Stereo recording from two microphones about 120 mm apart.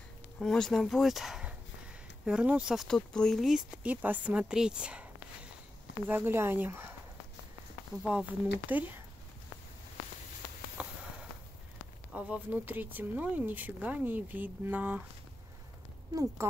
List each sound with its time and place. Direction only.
0.4 s speech: 5° left (ahead or behind)
6.0 s speech: 15° right (ahead or behind)
8.1 s speech: 10° right (ahead or behind)
10.8 s sniff: 10° right (ahead or behind)
12.1 s speech: 10° right (ahead or behind)